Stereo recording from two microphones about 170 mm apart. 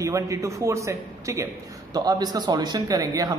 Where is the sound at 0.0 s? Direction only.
20° right (ahead or behind).